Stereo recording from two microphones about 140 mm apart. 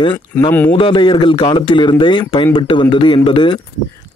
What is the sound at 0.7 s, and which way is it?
Speech, 40° left (ahead or behind).